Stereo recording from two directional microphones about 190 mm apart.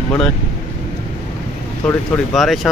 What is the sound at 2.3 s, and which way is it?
Speech, centre (ahead or behind).